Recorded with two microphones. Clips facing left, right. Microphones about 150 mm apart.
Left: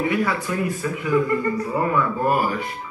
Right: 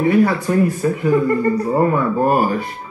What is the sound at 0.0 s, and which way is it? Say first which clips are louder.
A man's voice: right 7 dB; 40° right (ahead or behind).